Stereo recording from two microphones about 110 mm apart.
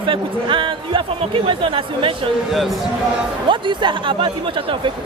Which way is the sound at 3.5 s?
50° right (ahead or behind).